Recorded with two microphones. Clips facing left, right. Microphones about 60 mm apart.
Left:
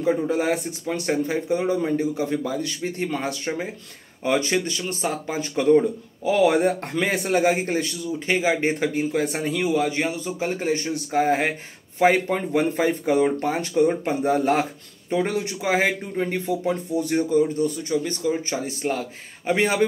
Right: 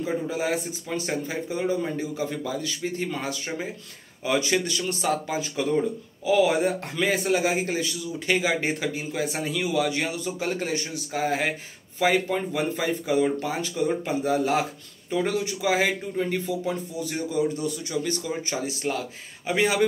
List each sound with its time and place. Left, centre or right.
0.3 s a man's voice: left
5.4 s a man's voice: left
8.3 s speech: left